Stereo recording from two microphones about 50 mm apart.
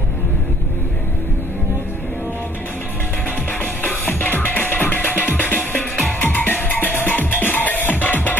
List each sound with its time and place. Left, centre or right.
3.8 s music: left